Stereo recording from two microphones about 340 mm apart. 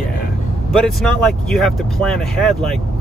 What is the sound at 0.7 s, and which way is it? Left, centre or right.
Speech, centre.